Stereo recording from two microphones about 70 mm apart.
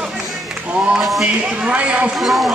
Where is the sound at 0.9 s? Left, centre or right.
Centre.